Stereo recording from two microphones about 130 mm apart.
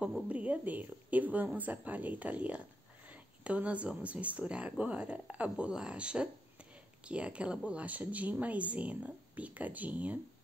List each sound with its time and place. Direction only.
0.0 s speech: 10° right (ahead or behind)